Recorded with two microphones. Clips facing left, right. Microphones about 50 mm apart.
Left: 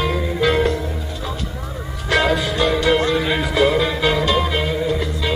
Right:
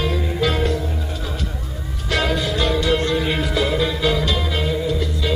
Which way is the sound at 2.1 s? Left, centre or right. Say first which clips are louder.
Left 4 dB; left.